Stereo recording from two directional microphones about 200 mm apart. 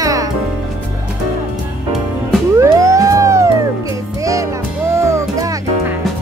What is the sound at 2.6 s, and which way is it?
Music, 15° right (ahead or behind).